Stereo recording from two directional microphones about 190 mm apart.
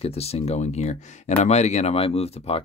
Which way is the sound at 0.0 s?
30° left (ahead or behind).